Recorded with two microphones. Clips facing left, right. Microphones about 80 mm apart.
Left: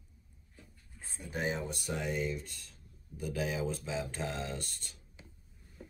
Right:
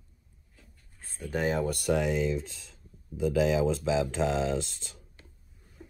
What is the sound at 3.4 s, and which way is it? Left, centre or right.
Speech, right.